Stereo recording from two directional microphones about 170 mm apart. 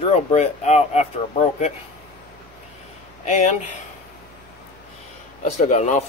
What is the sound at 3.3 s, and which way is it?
Speech, 45° left (ahead or behind).